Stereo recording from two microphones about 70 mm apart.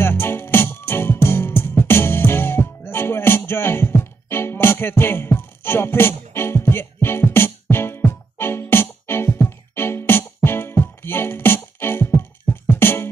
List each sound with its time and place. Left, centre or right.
0.0 s music: left